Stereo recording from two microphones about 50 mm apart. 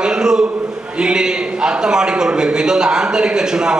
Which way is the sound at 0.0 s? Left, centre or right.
Centre.